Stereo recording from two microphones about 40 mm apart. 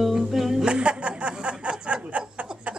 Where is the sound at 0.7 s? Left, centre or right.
Right.